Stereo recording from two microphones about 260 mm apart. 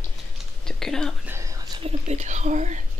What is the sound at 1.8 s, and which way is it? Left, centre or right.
Whispering, right.